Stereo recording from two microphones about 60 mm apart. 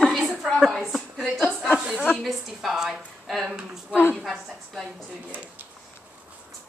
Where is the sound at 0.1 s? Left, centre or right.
Centre.